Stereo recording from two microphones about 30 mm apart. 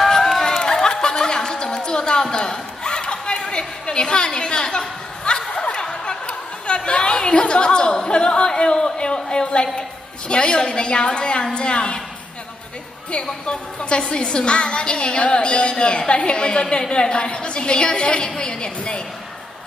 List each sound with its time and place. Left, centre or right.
0.5 s chatter: left
1.0 s a sound: left
3.4 s chatter: left
5.5 s snicker: left
6.0 s a sound: left
9.8 s a woman's voice: left
13.5 s a woman's voice: left